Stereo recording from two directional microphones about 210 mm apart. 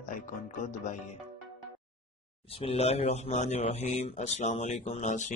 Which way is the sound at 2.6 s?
30° left (ahead or behind).